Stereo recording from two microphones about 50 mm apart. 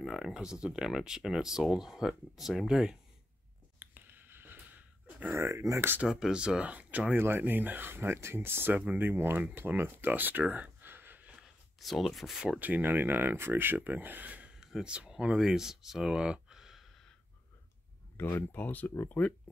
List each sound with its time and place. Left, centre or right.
0.0 s speech: centre
0.3 s speech: centre
3.8 s a sound: right
5.3 s speech: right
6.0 s speech: centre; by 7.2 s right
7.2 s speech: right
11.8 s speech: centre
12.5 s speech: right
14.5 s a sound: centre
15.3 s speech: centre
18.1 s speech: left